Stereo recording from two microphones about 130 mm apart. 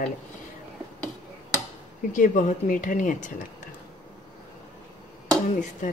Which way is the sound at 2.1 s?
90° left.